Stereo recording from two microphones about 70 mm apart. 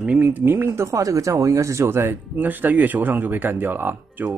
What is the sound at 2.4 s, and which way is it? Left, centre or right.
Speech, right.